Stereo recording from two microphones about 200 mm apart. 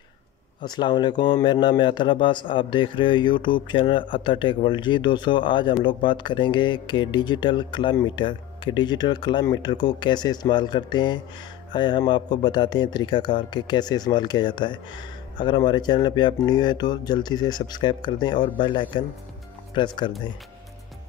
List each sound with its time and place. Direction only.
0.6 s speech: 20° left (ahead or behind)